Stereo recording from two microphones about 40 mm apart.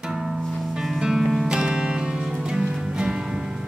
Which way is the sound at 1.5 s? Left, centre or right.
Right.